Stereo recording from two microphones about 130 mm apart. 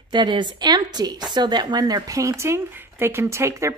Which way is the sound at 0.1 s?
35° right (ahead or behind).